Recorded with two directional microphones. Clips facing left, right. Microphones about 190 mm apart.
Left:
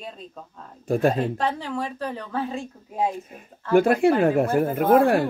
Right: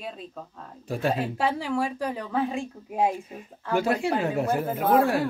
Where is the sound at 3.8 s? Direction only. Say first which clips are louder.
Left 7 dB; 55° left (ahead or behind).